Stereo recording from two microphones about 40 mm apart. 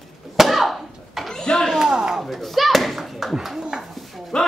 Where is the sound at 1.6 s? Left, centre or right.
Centre.